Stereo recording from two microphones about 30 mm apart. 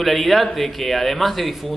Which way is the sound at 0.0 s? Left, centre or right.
Centre.